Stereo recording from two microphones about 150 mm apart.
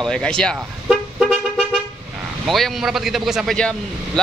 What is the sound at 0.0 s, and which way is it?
Speech, 5° left (ahead or behind).